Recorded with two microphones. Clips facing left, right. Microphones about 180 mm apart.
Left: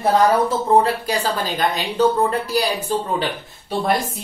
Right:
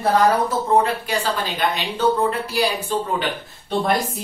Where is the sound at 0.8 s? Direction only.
35° left (ahead or behind).